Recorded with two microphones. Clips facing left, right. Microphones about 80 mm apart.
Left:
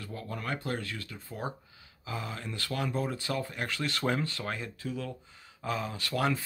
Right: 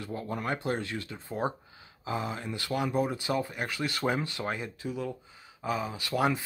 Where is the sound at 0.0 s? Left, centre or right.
Right.